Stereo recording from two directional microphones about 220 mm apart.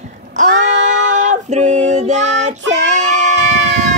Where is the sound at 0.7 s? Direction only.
35° right (ahead or behind).